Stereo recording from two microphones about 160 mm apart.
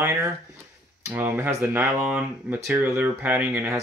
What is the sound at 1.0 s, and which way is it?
Speech, 15° right (ahead or behind).